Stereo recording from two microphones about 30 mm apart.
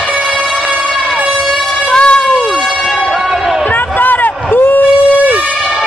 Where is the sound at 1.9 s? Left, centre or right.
Left.